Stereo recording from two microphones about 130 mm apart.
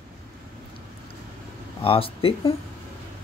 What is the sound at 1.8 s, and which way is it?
Speech, 45° left (ahead or behind).